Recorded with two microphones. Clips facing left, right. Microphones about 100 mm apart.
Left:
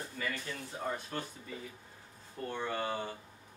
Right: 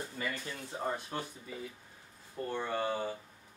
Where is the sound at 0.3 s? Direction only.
20° right (ahead or behind).